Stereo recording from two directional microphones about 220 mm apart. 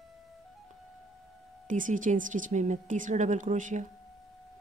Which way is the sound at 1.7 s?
35° right (ahead or behind).